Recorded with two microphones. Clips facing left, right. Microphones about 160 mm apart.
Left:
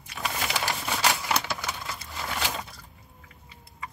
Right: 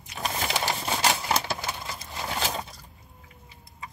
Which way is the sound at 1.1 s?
30° right (ahead or behind).